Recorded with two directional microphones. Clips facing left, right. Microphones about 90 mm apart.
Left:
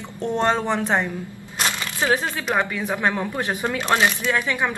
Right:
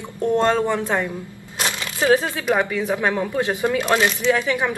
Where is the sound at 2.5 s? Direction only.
20° left (ahead or behind).